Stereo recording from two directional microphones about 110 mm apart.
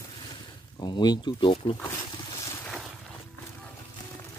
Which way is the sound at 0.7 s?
40° left (ahead or behind).